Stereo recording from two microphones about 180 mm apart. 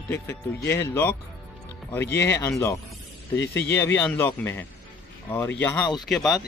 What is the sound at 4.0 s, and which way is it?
Speech, 10° left (ahead or behind).